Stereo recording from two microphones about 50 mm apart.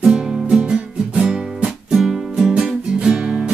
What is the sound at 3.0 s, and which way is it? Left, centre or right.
Music, centre.